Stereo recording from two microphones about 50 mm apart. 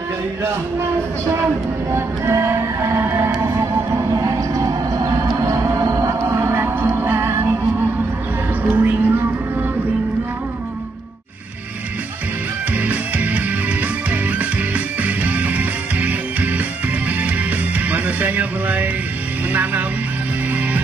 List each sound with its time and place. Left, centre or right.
1.9 s music: right
5.5 s music: right
6.9 s music: right
8.7 s music: right
12.7 s music: right